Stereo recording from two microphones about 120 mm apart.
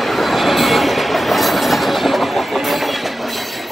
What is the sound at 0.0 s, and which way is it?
Train, centre (ahead or behind).